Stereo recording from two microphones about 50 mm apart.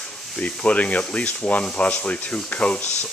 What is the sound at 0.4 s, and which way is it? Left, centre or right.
Speech, left.